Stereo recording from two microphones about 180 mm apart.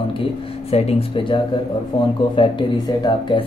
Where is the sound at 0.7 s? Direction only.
35° left (ahead or behind).